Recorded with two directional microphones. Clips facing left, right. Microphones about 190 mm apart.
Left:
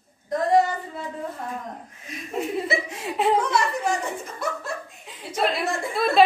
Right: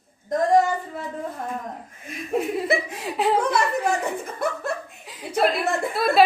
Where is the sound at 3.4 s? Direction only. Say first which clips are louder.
Right 2 dB; 55° right (ahead or behind).